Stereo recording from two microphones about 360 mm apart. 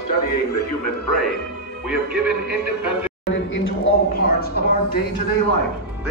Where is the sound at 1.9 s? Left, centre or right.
Centre.